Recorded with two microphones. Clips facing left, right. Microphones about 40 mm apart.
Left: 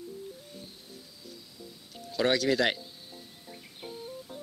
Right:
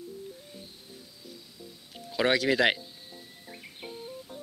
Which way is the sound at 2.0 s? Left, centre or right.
Centre.